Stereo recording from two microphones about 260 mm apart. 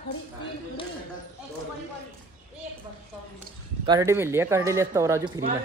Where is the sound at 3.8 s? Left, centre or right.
Centre.